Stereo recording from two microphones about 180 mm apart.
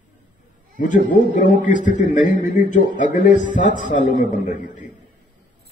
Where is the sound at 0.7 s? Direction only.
45° left (ahead or behind).